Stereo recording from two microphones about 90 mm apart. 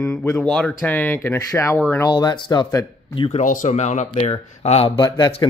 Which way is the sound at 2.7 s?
40° left (ahead or behind).